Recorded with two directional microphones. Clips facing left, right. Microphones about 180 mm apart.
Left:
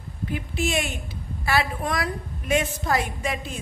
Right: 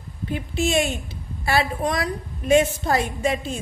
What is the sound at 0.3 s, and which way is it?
A woman's voice, 25° right (ahead or behind).